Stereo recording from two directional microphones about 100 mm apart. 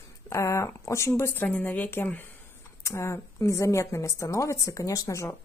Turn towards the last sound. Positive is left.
turn(degrees=30)  # may be behind; listen again after turning